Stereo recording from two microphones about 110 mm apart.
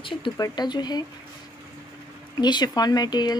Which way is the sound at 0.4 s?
40° left (ahead or behind).